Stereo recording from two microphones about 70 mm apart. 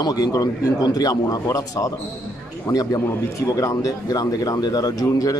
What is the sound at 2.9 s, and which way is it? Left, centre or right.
Speech, left.